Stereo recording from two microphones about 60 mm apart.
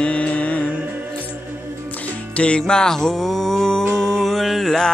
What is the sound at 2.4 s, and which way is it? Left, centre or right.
Music, centre.